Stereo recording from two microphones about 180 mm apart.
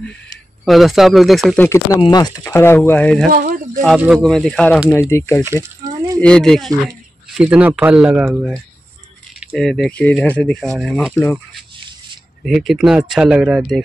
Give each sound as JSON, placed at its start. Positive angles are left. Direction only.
{"t": 0.7, "sound": "speech", "side_deg": 0}
{"t": 2.0, "sound": "speech", "side_deg": 25}
{"t": 3.3, "sound": "speech", "side_deg": -50}
{"t": 3.8, "sound": "speech", "side_deg": -5}
{"t": 5.1, "sound": "speech", "side_deg": 15}
{"t": 5.4, "sound": "speech", "side_deg": -15}
{"t": 6.2, "sound": "speech", "side_deg": 5}
{"t": 12.4, "sound": "speech", "side_deg": 0}